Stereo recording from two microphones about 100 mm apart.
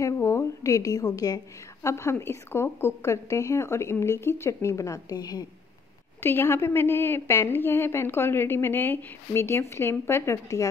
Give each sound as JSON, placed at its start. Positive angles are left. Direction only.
{"t": 0.0, "sound": "a woman's voice", "side_deg": 30}
{"t": 6.2, "sound": "a woman's voice", "side_deg": 25}